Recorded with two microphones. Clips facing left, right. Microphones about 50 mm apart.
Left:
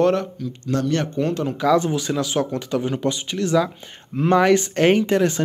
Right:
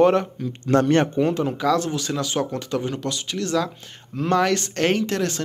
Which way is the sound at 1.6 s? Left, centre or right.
Centre.